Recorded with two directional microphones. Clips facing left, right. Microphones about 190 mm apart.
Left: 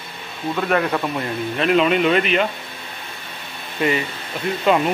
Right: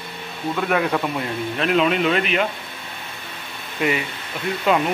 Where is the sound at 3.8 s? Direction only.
10° right (ahead or behind).